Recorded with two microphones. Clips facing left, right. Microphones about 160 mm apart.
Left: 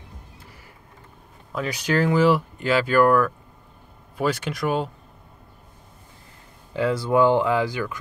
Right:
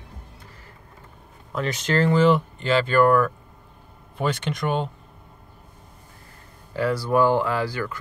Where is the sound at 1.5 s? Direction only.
5° left (ahead or behind).